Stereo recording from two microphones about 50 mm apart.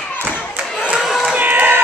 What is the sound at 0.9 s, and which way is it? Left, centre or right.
Crowd, centre.